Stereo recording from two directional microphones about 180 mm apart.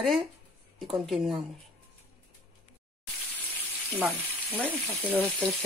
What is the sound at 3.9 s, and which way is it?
Frying, 10° right (ahead or behind).